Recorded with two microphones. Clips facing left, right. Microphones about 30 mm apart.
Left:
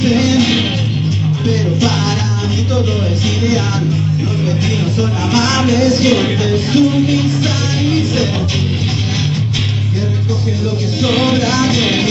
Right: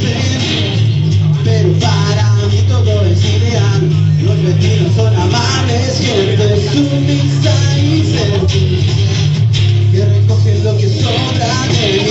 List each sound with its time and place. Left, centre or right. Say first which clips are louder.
0.2 s music: left 4 dB; centre
5.8 s music: left 5 dB; left
6.7 s music: left 2 dB; left
11.1 s vehicle: left 5 dB; centre